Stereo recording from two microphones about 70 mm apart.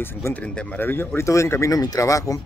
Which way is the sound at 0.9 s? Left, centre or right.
Left.